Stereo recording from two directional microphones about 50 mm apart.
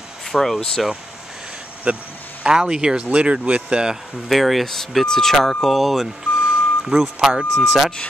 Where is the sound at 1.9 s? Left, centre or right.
Right.